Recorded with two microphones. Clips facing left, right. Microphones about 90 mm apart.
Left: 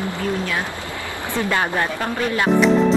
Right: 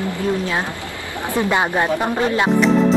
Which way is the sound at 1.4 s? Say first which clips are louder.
Right 3 dB; 20° right (ahead or behind).